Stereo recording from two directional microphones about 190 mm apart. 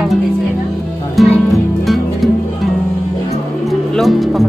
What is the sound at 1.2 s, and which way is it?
Music, centre (ahead or behind).